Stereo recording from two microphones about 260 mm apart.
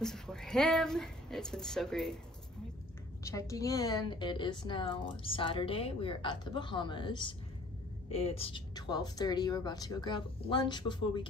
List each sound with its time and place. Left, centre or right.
0.0 s a woman's voice: centre
3.3 s a woman's voice: centre